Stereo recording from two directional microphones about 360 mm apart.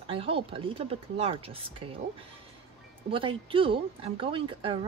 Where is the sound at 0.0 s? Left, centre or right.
Centre.